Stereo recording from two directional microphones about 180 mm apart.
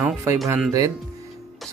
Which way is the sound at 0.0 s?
15° right (ahead or behind).